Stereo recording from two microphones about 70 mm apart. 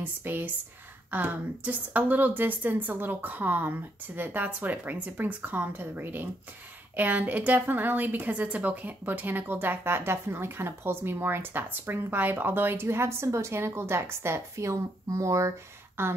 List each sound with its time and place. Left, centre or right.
0.0 s a woman's voice: right
16.0 s speech: right